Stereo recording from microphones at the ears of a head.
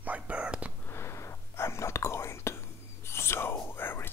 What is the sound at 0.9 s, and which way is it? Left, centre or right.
Whispering, left.